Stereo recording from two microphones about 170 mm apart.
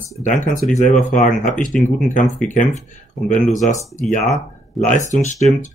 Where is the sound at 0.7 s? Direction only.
50° left (ahead or behind).